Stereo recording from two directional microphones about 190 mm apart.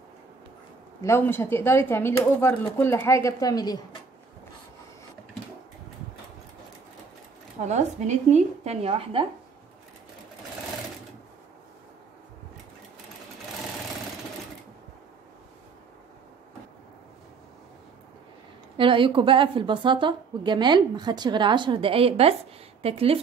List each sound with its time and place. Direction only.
1.0 s a woman's voice: 10° left (ahead or behind)
7.6 s a woman's voice: 40° right (ahead or behind)
18.8 s a woman's voice: 25° right (ahead or behind)